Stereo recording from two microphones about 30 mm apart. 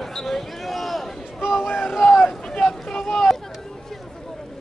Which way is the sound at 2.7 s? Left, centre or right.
Centre.